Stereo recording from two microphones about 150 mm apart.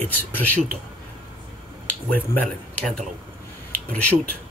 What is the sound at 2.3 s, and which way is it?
Speech, 5° left (ahead or behind).